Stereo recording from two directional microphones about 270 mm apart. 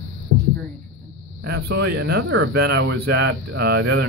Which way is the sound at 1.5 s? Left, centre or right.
Right.